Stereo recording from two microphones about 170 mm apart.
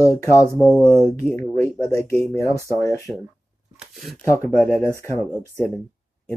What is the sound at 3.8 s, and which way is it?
Speech, centre (ahead or behind).